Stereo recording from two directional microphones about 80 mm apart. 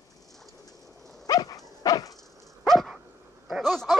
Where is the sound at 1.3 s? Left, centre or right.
Left.